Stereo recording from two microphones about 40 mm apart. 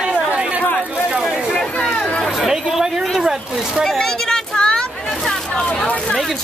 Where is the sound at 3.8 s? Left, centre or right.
Centre.